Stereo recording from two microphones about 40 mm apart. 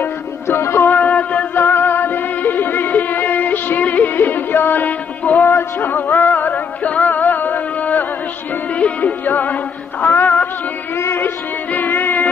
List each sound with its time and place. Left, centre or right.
0.5 s music: left
0.9 s a sound: left
1.5 s music: left
5.4 s music: left
6.8 s music: left
8.7 s music: left
9.2 s music: left
11.7 s a sound: left